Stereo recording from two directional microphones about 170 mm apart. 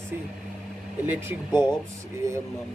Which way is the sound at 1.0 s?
10° right (ahead or behind).